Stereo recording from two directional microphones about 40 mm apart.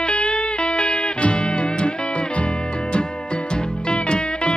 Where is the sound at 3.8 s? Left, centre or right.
Left.